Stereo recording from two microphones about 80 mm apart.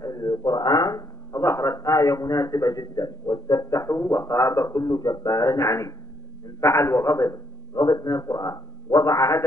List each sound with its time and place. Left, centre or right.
0.0 s a man's voice: left
7.7 s a man's voice: left